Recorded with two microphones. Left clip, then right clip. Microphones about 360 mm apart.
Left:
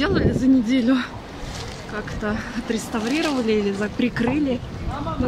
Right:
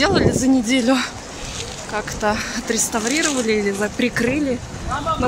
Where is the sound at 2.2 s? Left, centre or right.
Centre.